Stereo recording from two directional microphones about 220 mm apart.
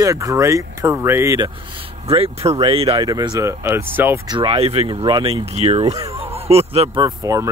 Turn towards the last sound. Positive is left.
turn(degrees=-15)  # may be behind; listen again after turning